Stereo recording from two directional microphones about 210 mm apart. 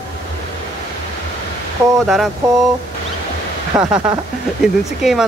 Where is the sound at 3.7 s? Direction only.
15° right (ahead or behind).